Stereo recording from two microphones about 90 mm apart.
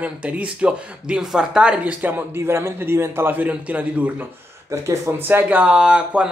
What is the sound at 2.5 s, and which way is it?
Speech, 30° right (ahead or behind).